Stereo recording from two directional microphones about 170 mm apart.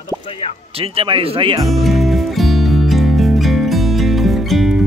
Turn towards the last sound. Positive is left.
turn(degrees=0)  # may be behind; listen again after turning